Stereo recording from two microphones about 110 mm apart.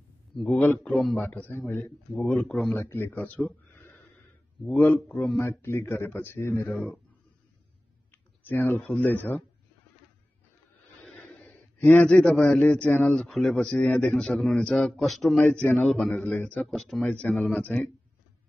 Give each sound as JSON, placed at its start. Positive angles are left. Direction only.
{"t": 0.6, "sound": "speech", "side_deg": 15}
{"t": 0.9, "sound": "speech", "side_deg": 5}
{"t": 1.2, "sound": "speech", "side_deg": 15}
{"t": 2.7, "sound": "speech", "side_deg": 20}
{"t": 3.7, "sound": "wheeze", "side_deg": 20}
{"t": 4.6, "sound": "a man's voice", "side_deg": 15}
{"t": 6.7, "sound": "speech", "side_deg": 10}
{"t": 8.1, "sound": "speech", "side_deg": 20}
{"t": 11.1, "sound": "a man's voice", "side_deg": 15}